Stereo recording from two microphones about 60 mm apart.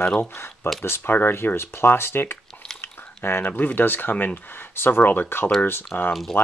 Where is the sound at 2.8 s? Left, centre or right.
Left.